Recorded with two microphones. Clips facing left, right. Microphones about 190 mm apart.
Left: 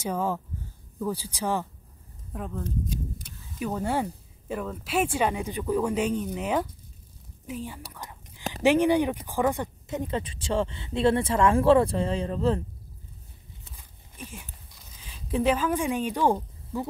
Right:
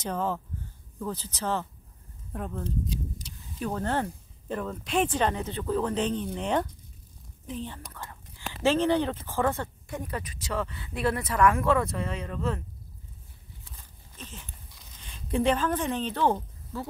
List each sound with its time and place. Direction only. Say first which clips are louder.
0.0 s speech: left 2 dB; 10° left (ahead or behind)
2.3 s speech: even; centre (ahead or behind)
2.9 s speech: left 1 dB; 55° left (ahead or behind)
3.5 s speech: left 1 dB; 10° left (ahead or behind)
7.4 s whispering: left 1 dB; 10° left (ahead or behind)
8.6 s speech: left 3 dB; 15° left (ahead or behind); by 12.6 s 30° left (ahead or behind)
13.7 s a sound: left 4 dB; 10° left (ahead or behind)
15.0 s speech: even; 5° left (ahead or behind)